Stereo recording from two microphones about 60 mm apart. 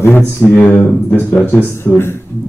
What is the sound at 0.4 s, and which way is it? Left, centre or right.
Speech, left.